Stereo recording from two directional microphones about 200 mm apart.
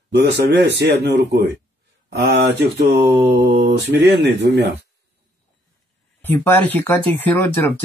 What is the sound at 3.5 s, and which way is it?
Speech, 60° right (ahead or behind).